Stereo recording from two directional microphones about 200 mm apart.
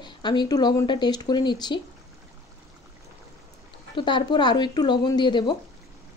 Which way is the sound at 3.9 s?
25° left (ahead or behind).